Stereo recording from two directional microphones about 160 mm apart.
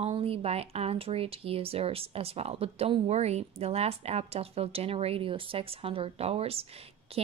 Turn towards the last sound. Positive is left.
turn(degrees=-35)  # may be behind; listen again after turning